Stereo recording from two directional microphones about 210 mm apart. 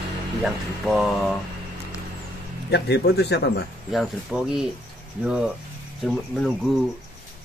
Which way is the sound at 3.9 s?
Centre (ahead or behind).